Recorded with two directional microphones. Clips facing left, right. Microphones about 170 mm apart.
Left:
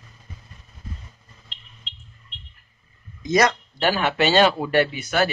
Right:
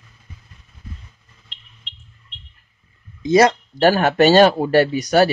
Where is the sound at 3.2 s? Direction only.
30° right (ahead or behind).